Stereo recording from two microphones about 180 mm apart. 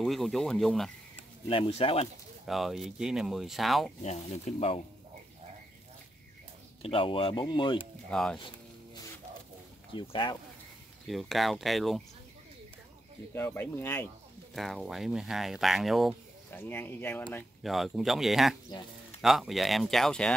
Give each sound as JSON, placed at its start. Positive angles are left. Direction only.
{"t": 0.0, "sound": "speech", "side_deg": 0}
{"t": 1.5, "sound": "speech", "side_deg": 30}
{"t": 2.4, "sound": "speech", "side_deg": 0}
{"t": 4.0, "sound": "speech", "side_deg": 40}
{"t": 6.8, "sound": "speech", "side_deg": 30}
{"t": 8.1, "sound": "speech", "side_deg": 5}
{"t": 9.9, "sound": "speech", "side_deg": 25}
{"t": 11.1, "sound": "speech", "side_deg": 0}
{"t": 13.3, "sound": "speech", "side_deg": 10}
{"t": 14.5, "sound": "speech", "side_deg": 0}
{"t": 16.4, "sound": "speech", "side_deg": 10}
{"t": 18.7, "sound": "a sound", "side_deg": 25}
{"t": 19.2, "sound": "speech", "side_deg": 0}